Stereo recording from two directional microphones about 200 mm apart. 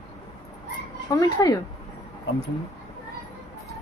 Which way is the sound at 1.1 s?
20° left (ahead or behind).